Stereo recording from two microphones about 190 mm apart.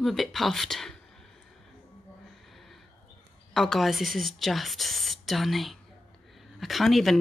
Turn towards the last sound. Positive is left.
turn(degrees=0)  # may be behind; listen again after turning